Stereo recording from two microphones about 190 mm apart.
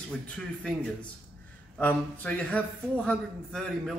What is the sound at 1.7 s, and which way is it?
A man's voice, 10° left (ahead or behind).